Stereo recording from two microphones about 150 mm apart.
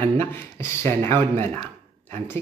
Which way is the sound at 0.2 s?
15° left (ahead or behind).